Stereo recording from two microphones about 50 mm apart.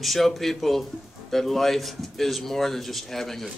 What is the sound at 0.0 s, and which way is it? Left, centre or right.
Speech, centre.